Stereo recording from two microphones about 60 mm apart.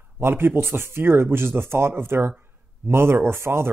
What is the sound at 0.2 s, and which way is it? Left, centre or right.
Speech, right.